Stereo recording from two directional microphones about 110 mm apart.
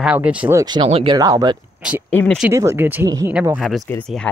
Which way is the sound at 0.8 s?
60° right (ahead or behind).